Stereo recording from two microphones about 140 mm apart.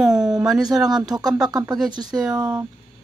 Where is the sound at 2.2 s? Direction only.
5° right (ahead or behind).